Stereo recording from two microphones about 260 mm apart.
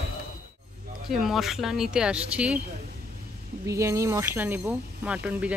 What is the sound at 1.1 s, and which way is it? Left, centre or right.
Speech, centre.